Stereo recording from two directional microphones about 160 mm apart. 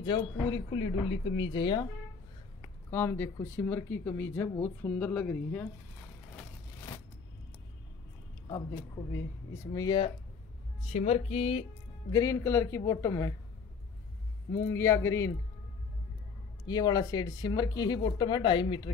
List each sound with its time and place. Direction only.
0.0 s speech: 30° left (ahead or behind)
2.9 s speech: 15° left (ahead or behind)
9.8 s speech: 30° left (ahead or behind)
10.8 s speech: 45° left (ahead or behind)
12.1 s speech: 20° left (ahead or behind)
14.5 s speech: 15° left (ahead or behind)
16.6 s speech: 25° left (ahead or behind)